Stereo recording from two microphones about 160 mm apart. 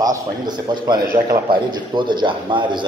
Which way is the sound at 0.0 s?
25° right (ahead or behind).